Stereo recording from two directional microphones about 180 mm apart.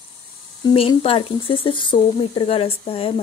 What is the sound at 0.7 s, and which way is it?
Speech, 30° left (ahead or behind).